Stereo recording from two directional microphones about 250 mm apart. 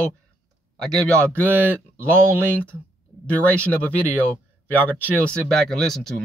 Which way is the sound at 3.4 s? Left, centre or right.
Centre.